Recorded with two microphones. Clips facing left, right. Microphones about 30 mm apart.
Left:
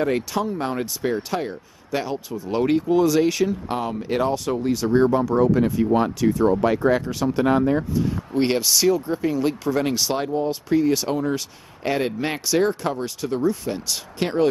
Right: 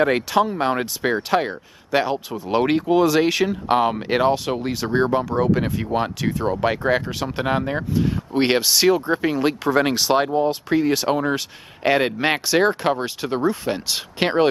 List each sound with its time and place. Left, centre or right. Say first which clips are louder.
0.0 s speech: right 4 dB; right
3.6 s speech: right 7 dB; right